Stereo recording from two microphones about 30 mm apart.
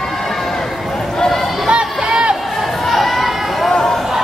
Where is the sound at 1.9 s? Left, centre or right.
Centre.